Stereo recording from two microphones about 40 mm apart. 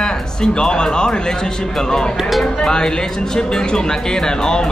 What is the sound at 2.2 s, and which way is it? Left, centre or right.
Speech, centre.